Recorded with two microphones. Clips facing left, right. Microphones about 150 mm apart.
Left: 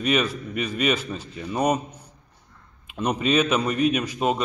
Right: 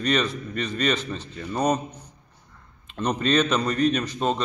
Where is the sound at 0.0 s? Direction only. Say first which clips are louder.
Left 1 dB; 10° left (ahead or behind).